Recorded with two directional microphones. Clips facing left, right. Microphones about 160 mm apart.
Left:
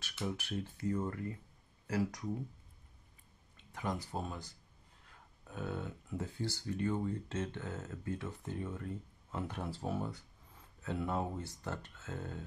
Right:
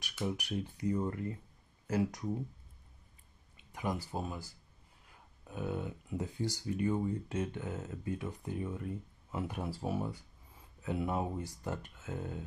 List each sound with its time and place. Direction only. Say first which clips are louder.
0.0 s speech: right 3 dB; 15° right (ahead or behind)
3.5 s speech: right 2 dB; 10° right (ahead or behind)